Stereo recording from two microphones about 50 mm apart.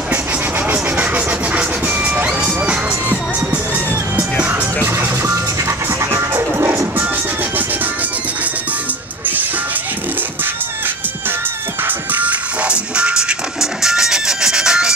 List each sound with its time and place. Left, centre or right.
0.9 s vehicle: right
2.2 s music: right
4.8 s music: right
12.1 s music: right; by 14.9 s centre